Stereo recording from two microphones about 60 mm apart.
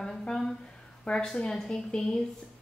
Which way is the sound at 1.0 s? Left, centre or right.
Centre.